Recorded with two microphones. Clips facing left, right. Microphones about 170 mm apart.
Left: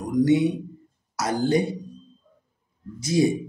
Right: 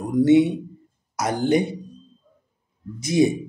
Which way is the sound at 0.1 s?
25° right (ahead or behind).